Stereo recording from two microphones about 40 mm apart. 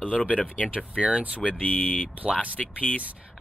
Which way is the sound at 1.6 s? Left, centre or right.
Left.